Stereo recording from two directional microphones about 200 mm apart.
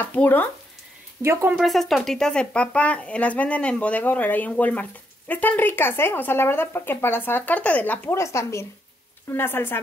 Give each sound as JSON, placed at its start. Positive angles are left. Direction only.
{"t": 0.1, "sound": "speech", "side_deg": 10}
{"t": 1.2, "sound": "speech", "side_deg": -10}